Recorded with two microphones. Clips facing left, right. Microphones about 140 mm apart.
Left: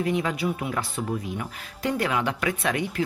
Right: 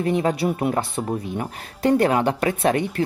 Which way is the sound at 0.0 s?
35° right (ahead or behind).